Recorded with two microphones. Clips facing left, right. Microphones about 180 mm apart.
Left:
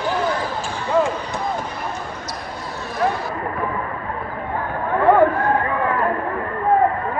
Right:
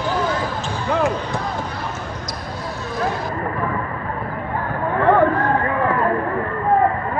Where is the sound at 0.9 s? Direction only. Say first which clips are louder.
Left 2 dB; 70° right (ahead or behind).